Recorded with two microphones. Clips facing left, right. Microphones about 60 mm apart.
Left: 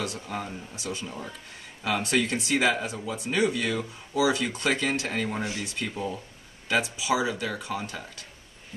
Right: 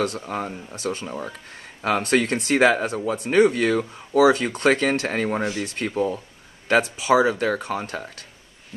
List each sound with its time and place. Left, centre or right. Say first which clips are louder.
0.0 s speech: right 7 dB; right
1.0 s speech: right 6 dB; right
1.8 s speech: right 5 dB; right
5.6 s speech: right 5 dB; right
5.9 s speech: right 12 dB; right
6.7 s speech: right 7 dB; right